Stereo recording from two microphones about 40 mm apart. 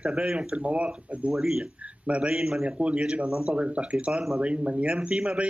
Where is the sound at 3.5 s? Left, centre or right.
Right.